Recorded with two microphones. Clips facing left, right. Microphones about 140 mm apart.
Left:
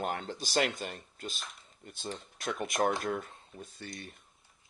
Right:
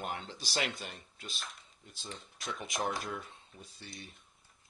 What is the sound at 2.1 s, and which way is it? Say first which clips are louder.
Speech: left 6 dB; centre (ahead or behind).